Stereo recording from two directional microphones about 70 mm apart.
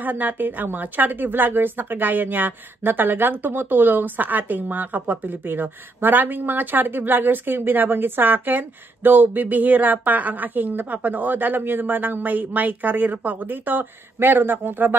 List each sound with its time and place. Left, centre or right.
0.0 s speech: right